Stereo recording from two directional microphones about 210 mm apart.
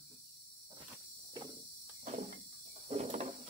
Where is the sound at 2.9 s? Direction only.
30° right (ahead or behind).